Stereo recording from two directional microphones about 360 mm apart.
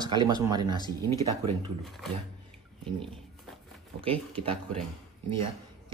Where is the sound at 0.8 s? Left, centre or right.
Centre.